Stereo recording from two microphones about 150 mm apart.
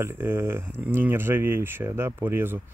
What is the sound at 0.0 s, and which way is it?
Speech, 15° right (ahead or behind).